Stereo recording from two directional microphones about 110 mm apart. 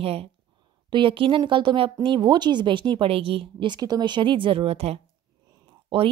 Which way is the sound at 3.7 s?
40° right (ahead or behind).